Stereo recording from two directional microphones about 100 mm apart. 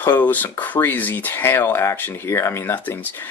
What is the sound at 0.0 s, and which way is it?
Speech, 20° left (ahead or behind).